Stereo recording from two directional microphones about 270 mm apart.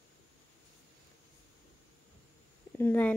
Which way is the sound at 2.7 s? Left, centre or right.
Centre.